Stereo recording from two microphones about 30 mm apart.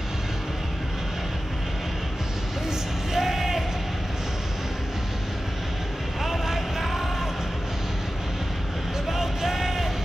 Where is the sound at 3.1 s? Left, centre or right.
Centre.